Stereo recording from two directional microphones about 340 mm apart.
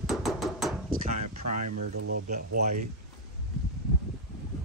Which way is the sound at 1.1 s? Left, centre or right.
Right.